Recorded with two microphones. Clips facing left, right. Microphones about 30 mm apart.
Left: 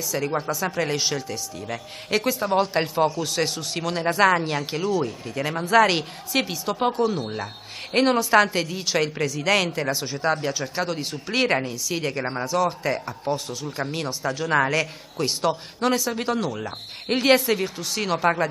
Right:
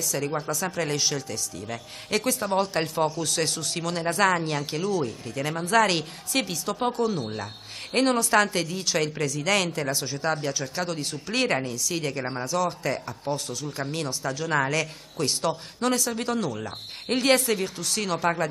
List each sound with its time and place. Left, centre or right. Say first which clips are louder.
0.1 s a woman's voice: left 4 dB; centre